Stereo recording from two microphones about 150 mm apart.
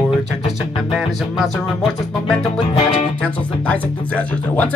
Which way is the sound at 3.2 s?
10° left (ahead or behind).